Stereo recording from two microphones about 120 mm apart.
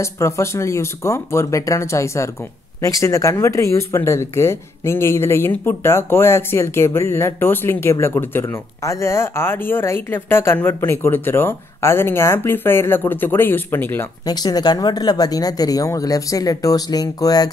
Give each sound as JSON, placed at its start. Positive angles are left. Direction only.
{"t": 0.0, "sound": "speech", "side_deg": 25}
{"t": 14.2, "sound": "speech", "side_deg": 35}